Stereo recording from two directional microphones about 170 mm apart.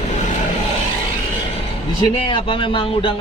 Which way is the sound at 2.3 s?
30° left (ahead or behind).